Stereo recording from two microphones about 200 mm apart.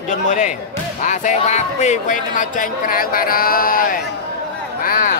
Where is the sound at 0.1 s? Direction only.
40° left (ahead or behind).